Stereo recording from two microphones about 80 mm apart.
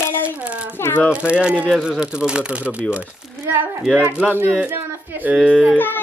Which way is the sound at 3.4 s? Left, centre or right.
Right.